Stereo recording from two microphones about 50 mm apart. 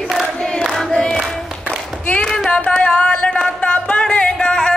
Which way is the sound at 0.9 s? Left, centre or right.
Centre.